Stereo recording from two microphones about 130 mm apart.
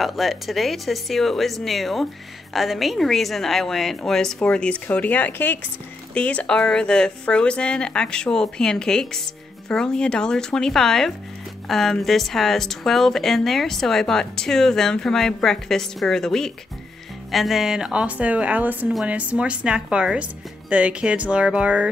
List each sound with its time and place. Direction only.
0.0 s speech: centre (ahead or behind)